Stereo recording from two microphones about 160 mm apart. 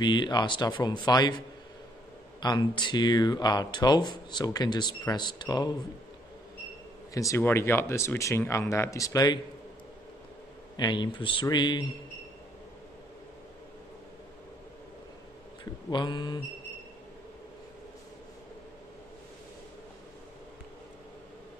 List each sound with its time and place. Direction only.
0.0 s speech: 30° left (ahead or behind)
2.4 s speech: 25° left (ahead or behind)
7.2 s speech: 15° left (ahead or behind)
10.8 s speech: 30° left (ahead or behind)
15.6 s speech: 30° left (ahead or behind)